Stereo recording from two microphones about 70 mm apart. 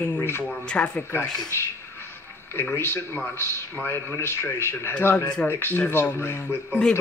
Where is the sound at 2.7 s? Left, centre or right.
Left.